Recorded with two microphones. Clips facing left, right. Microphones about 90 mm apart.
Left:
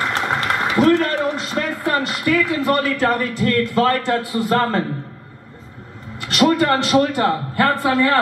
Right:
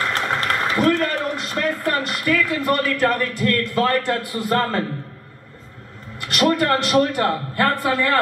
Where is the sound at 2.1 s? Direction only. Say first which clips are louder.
Left 2 dB; 10° left (ahead or behind).